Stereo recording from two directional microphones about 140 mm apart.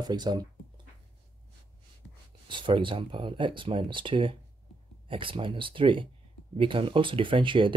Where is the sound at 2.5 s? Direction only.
35° right (ahead or behind).